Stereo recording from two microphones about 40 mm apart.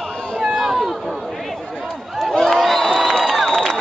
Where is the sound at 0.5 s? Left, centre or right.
Centre.